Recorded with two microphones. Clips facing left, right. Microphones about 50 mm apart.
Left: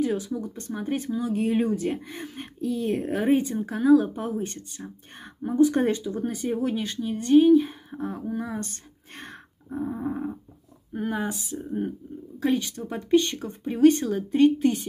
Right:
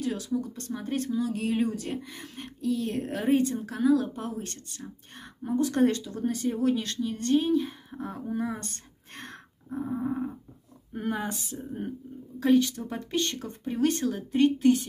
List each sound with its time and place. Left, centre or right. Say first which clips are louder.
0.0 s speech: left 3 dB; left
9.1 s grunt: left 1 dB; centre
10.9 s speech: left 3 dB; centre; by 14.8 s left